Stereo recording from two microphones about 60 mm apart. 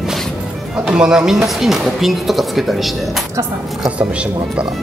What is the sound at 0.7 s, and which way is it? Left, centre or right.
Speech, centre.